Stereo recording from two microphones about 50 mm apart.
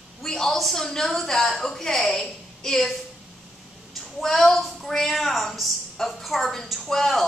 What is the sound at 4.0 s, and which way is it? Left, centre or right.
A woman's voice, centre.